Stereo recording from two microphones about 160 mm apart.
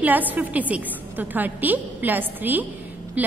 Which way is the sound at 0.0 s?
10° right (ahead or behind).